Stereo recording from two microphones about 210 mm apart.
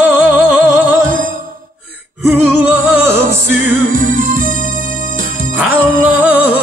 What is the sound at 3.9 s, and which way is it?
Music, 40° right (ahead or behind).